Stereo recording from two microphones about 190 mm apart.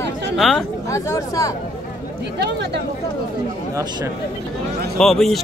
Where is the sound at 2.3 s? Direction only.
60° right (ahead or behind).